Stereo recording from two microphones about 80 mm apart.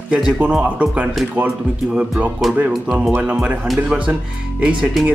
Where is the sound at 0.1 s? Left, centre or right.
Centre.